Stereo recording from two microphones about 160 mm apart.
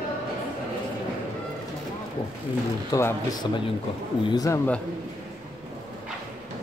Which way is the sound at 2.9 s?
20° left (ahead or behind).